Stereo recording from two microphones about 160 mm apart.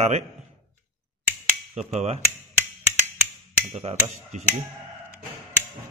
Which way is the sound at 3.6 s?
45° right (ahead or behind).